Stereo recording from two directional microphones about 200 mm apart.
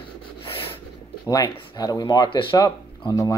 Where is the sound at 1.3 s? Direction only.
20° left (ahead or behind).